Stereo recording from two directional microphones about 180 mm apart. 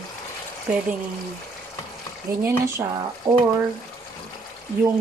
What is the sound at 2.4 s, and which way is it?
Speech, 15° right (ahead or behind).